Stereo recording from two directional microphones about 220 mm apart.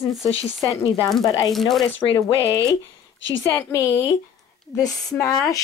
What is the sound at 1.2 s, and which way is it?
Speech, 15° left (ahead or behind).